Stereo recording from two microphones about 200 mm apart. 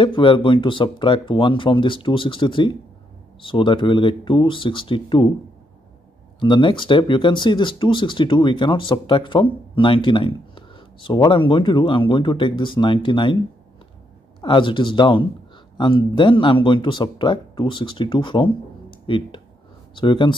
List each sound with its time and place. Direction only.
0.0 s speech: 25° left (ahead or behind)
6.4 s speech: 25° left (ahead or behind)
14.4 s speech: 25° left (ahead or behind)